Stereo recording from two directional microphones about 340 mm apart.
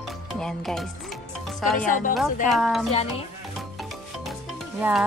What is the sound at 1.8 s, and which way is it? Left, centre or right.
Speech, left.